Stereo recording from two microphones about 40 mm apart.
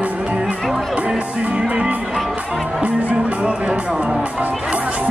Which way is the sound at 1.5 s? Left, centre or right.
Right.